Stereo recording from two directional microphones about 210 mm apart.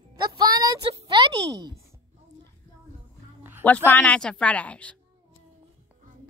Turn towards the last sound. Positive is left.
turn(degrees=5)  # may be behind; listen again after turning